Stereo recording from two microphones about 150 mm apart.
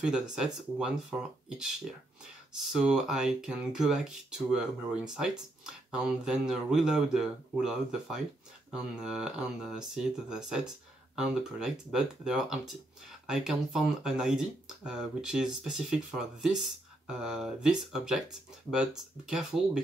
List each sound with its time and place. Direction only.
0.0 s speech: 5° right (ahead or behind)